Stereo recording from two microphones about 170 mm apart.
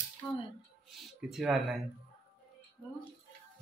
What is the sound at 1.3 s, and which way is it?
Speech, centre (ahead or behind).